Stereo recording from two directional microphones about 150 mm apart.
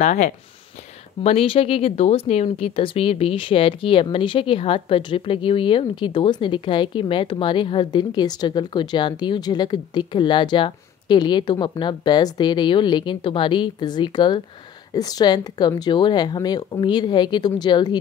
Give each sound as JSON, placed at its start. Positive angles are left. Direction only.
{"t": 0.0, "sound": "speech", "side_deg": 55}
{"t": 1.2, "sound": "speech", "side_deg": 40}